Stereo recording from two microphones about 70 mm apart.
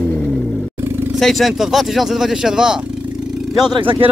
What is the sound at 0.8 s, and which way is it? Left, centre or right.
Vehicle, right.